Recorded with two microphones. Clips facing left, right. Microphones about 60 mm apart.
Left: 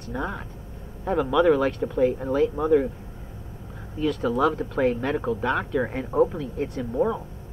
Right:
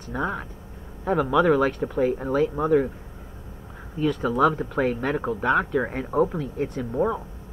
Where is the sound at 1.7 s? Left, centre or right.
Right.